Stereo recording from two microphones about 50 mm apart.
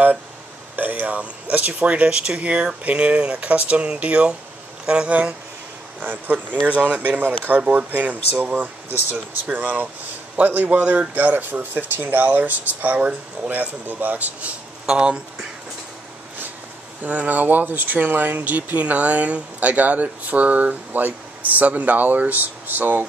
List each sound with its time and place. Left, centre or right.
0.7 s speech: right
5.9 s speech: right
10.8 s speech: right
14.9 s speech: right
17.0 s speech: right